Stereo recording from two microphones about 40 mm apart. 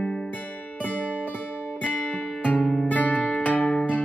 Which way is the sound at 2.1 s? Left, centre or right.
Left.